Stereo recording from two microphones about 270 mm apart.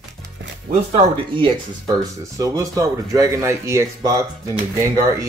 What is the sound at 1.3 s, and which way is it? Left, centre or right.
Speech, centre.